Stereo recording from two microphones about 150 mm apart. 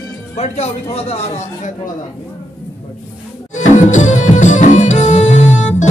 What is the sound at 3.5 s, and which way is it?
Music, 55° left (ahead or behind).